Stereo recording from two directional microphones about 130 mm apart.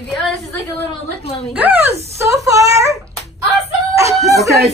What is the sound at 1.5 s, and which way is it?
Speech, 10° right (ahead or behind).